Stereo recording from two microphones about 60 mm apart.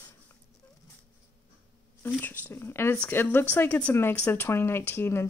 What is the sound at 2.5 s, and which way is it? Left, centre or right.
Speech, left.